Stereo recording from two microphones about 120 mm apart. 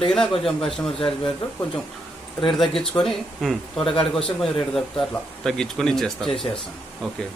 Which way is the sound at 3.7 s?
45° left (ahead or behind).